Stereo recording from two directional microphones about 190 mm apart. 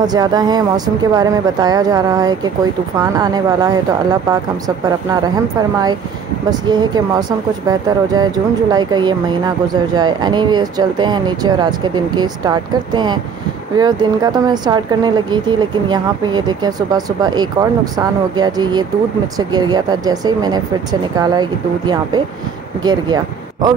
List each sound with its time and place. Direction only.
0.0 s speech: 20° right (ahead or behind)
6.5 s speech: 20° right (ahead or behind)